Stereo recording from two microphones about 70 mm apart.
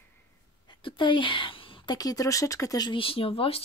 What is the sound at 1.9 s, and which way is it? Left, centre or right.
Speech, left.